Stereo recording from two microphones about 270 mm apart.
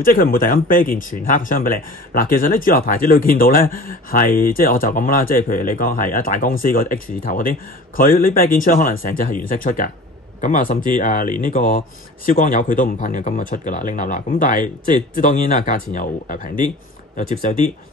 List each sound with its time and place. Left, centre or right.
0.0 s speech: left